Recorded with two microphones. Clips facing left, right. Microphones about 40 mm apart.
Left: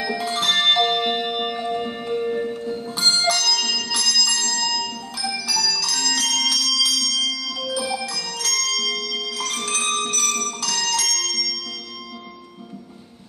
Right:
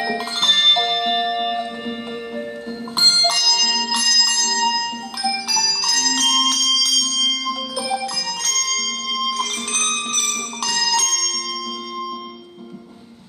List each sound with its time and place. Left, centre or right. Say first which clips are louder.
0.4 s music: right 2 dB; right
3.0 s bell: right 3 dB; right
5.8 s music: right 3 dB; right
7.0 s bell: right 3 dB; right
10.0 s music: even; right